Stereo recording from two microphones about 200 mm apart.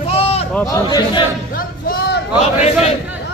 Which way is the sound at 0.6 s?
20° left (ahead or behind).